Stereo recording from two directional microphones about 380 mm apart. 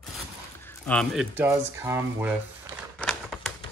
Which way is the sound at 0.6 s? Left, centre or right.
Centre.